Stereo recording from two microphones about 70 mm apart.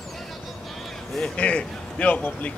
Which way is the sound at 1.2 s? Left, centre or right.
Centre.